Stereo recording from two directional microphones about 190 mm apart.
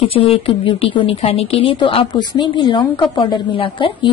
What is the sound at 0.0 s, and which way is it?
A woman's voice, 30° left (ahead or behind).